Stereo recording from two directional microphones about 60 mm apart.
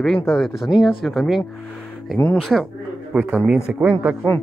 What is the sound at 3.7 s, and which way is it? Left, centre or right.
Speech, right.